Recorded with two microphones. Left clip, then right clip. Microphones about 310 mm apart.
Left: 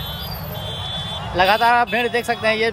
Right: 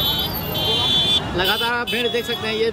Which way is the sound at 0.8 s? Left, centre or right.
Right.